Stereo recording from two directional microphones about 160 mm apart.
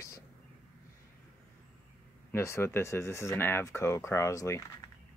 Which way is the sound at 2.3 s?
15° left (ahead or behind).